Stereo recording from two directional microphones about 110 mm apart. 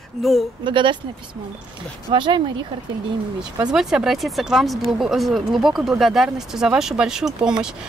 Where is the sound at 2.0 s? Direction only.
45° right (ahead or behind).